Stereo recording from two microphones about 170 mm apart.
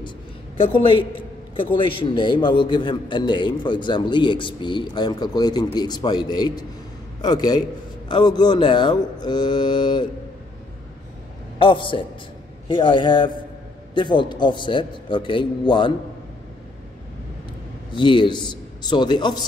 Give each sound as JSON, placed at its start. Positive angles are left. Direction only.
{"t": 0.6, "sound": "a man's voice", "side_deg": 30}
{"t": 11.5, "sound": "a man's voice", "side_deg": 30}
{"t": 17.9, "sound": "a man's voice", "side_deg": 30}